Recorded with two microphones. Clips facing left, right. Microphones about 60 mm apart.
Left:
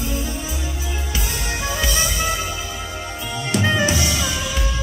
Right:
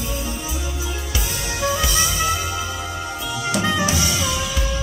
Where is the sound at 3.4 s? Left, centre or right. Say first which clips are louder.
Left 2 dB; left.